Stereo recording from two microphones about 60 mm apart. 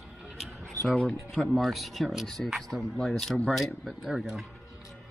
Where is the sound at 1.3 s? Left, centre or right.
Centre.